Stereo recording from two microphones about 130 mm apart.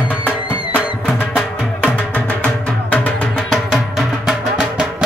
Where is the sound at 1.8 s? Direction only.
10° left (ahead or behind).